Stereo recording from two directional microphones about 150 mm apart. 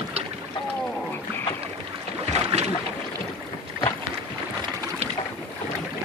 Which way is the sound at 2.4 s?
45° right (ahead or behind).